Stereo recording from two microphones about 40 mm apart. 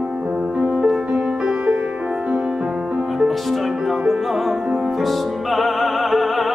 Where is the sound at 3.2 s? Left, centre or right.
Centre.